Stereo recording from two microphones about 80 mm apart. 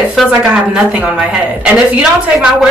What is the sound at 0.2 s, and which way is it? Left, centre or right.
Speech, centre.